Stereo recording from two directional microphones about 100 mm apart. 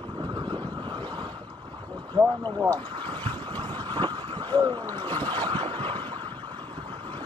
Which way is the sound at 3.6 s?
50° right (ahead or behind).